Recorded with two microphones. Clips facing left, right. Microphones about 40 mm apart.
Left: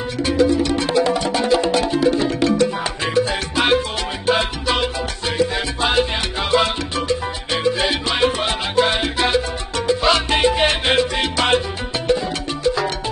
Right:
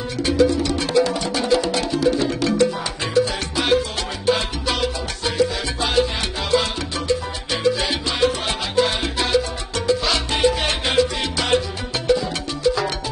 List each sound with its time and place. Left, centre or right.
0.2 s music: left
4.3 s salsa music: left
10.0 s music: left